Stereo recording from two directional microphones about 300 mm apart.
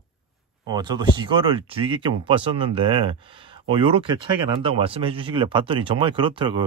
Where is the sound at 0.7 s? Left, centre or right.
Centre.